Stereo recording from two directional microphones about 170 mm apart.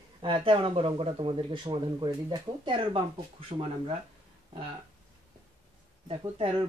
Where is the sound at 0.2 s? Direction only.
30° right (ahead or behind).